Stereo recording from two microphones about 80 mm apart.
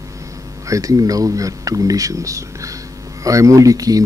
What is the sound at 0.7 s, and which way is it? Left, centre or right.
Speech, right.